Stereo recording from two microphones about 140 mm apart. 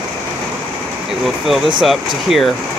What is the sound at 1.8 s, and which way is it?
Speech, centre (ahead or behind).